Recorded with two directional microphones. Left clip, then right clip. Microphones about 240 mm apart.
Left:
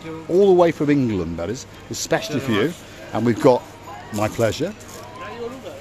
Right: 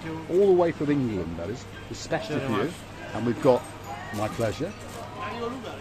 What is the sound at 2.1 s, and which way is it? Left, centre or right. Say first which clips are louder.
Speech: left 6 dB; left.